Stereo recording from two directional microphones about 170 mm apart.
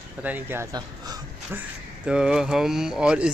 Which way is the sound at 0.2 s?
10° right (ahead or behind).